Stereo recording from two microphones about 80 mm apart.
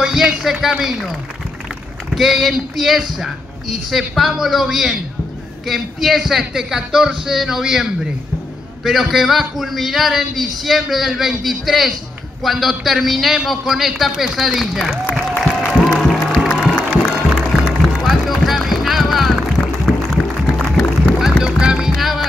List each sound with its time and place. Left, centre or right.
0.0 s a man's voice: centre
2.1 s a man's voice: centre
15.0 s music: left
16.0 s music: centre
19.9 s music: centre
21.2 s music: centre